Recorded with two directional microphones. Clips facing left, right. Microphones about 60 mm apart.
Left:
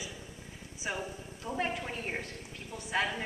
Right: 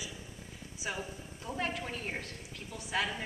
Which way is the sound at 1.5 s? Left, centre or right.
Centre.